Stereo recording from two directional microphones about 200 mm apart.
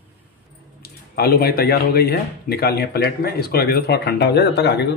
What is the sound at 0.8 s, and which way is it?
Speech, 50° left (ahead or behind).